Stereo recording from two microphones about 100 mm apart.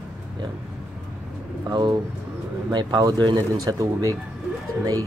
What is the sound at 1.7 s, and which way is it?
Speech, 45° right (ahead or behind).